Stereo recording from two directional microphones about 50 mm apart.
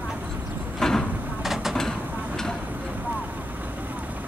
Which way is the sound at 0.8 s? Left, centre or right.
Centre.